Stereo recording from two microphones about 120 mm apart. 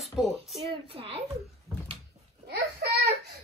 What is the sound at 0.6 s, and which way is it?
Speech, 55° right (ahead or behind).